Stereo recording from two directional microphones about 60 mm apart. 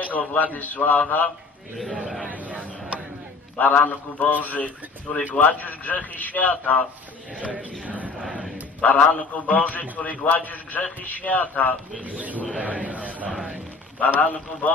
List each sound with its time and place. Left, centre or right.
0.0 s a man's voice: left
1.9 s speech: centre
2.2 s a sound: right
3.5 s a man's voice: left
7.3 s a man's voice: right
8.3 s a sound: right
8.9 s a man's voice: left
12.0 s a man's voice: right
13.9 s a man's voice: left